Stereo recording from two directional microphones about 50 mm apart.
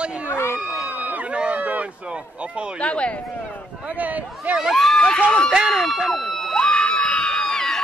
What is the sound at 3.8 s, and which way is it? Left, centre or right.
Speech, right.